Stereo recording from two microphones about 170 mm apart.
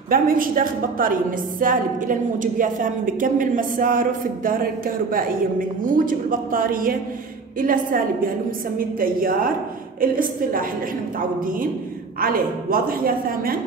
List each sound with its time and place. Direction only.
0.1 s a woman's voice: 55° right (ahead or behind)
12.2 s a woman's voice: 60° right (ahead or behind)